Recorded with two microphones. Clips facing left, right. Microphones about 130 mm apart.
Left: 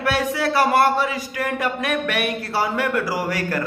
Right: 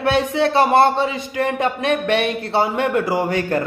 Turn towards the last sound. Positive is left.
turn(degrees=-25)  # may be behind; listen again after turning